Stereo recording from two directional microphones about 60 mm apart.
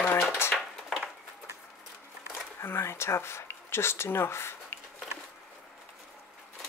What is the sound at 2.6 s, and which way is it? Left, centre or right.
Speech, left.